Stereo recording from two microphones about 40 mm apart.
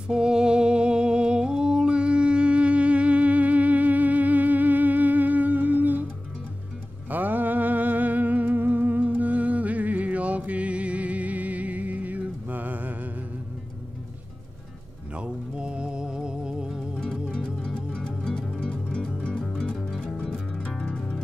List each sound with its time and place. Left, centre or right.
0.1 s humming: centre; by 6.0 s right
7.1 s music: right
15.1 s music: right
17.3 s music: centre